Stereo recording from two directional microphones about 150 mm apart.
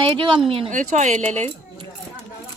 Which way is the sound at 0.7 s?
50° right (ahead or behind).